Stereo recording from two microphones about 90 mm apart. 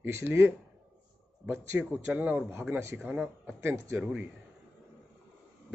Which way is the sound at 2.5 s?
30° right (ahead or behind).